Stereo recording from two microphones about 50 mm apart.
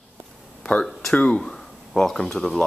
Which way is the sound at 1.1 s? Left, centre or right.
Left.